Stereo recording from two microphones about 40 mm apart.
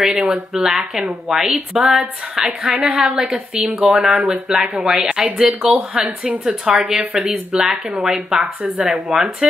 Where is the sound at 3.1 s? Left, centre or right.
Right.